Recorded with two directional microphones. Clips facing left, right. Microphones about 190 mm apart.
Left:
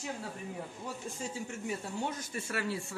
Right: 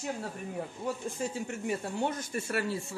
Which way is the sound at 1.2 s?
60° right (ahead or behind).